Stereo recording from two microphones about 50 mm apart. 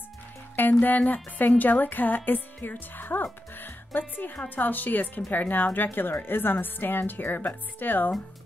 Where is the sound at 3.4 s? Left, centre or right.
Left.